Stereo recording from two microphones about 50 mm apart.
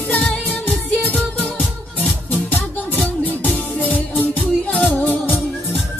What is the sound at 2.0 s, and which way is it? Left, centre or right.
Music, left.